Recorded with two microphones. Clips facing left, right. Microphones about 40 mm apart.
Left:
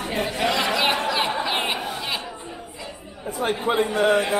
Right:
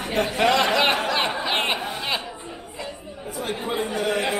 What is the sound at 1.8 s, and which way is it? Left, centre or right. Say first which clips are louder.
Chatter: right 1 dB; centre.